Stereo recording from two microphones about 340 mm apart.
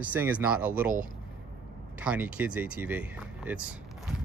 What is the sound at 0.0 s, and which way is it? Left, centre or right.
Speech, centre.